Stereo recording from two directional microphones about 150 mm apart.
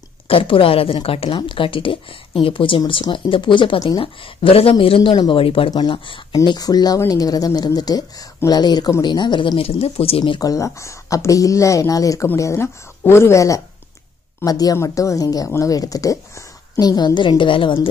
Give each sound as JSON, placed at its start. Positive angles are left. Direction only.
{"t": 0.3, "sound": "speech", "side_deg": 35}